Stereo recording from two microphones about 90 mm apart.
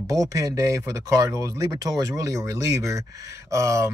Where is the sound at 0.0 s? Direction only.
40° right (ahead or behind).